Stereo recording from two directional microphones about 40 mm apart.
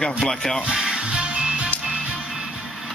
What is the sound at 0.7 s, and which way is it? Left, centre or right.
Music, centre.